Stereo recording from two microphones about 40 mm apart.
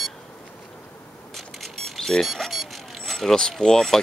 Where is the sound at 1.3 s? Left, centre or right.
Centre.